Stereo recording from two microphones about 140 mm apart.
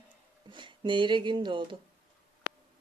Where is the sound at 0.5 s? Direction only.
35° right (ahead or behind).